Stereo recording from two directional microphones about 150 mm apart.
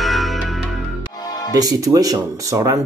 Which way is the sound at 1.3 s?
25° left (ahead or behind).